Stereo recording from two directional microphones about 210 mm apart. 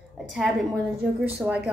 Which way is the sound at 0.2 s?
Centre (ahead or behind).